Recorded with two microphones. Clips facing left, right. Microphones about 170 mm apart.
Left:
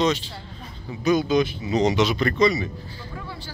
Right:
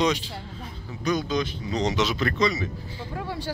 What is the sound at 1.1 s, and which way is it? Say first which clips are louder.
Speech: left 6 dB; 5° left (ahead or behind).